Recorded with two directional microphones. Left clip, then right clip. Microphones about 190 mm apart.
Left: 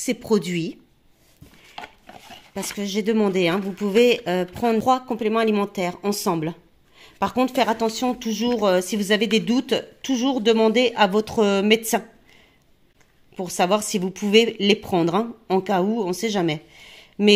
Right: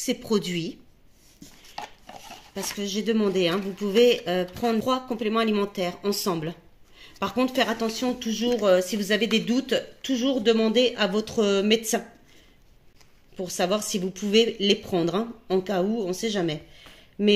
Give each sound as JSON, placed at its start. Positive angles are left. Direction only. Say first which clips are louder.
{"t": 0.0, "sound": "speech", "louder": "left 4 dB", "side_deg": 55}
{"t": 2.8, "sound": "speech", "louder": "left 4 dB", "side_deg": 60}
{"t": 13.4, "sound": "speech", "louder": "left 5 dB", "side_deg": 55}